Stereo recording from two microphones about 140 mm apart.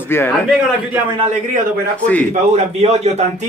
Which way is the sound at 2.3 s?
50° right (ahead or behind).